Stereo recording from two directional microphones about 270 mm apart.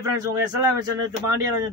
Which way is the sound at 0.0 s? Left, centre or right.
Centre.